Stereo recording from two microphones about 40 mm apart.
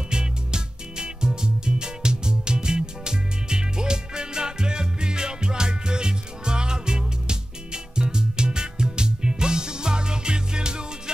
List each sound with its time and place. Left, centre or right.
0.1 s music: centre